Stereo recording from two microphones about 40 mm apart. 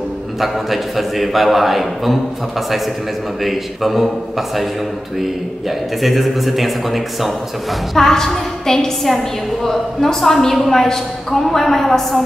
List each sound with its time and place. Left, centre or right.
0.4 s a man's voice: centre
3.4 s a man's voice: centre
5.9 s a man's voice: centre
8.1 s a woman's voice: centre